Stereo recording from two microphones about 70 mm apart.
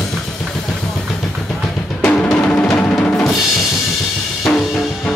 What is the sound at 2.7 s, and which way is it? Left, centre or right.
Music, centre.